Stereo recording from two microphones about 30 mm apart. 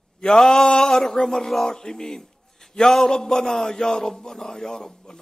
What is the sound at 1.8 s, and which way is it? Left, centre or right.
A man's voice, centre.